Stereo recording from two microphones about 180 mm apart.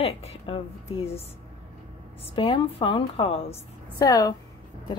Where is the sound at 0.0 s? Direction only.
35° left (ahead or behind).